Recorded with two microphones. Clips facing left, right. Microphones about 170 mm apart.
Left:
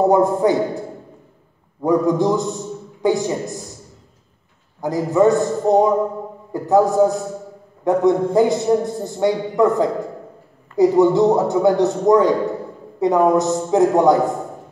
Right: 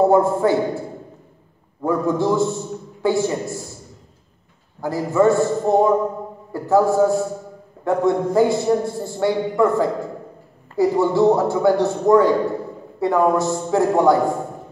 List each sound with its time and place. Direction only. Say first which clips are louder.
0.0 s a man's voice: even; 15° left (ahead or behind)
1.8 s a man's voice: left 3 dB; 15° left (ahead or behind)
4.8 s a man's voice: left 1 dB; 20° left (ahead or behind)